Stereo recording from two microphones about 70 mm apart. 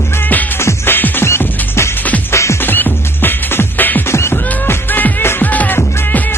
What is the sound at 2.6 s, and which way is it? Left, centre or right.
Music, left.